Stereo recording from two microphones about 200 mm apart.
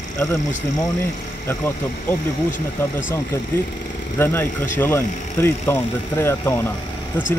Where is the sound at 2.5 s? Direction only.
40° left (ahead or behind).